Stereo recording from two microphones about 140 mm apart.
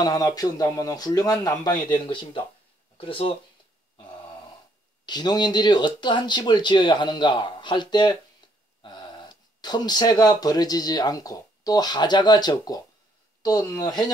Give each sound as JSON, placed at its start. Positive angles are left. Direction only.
{"t": 0.0, "sound": "speech", "side_deg": 25}
{"t": 5.0, "sound": "speech", "side_deg": 30}